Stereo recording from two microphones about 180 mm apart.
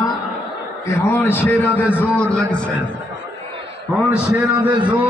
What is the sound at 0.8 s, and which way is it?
A man's voice, 15° left (ahead or behind).